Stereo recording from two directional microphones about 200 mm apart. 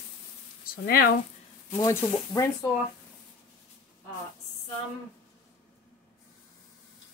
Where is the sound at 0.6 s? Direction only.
45° left (ahead or behind).